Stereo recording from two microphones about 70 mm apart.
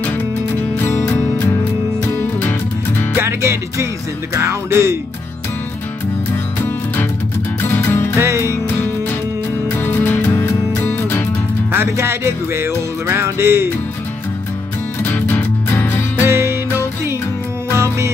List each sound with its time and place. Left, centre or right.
0.8 s music: left
3.2 s music: right
7.6 s music: left
8.2 s music: right
9.8 s music: left
10.8 s music: left
11.7 s music: right
15.0 s music: left
16.3 s music: right
17.7 s music: right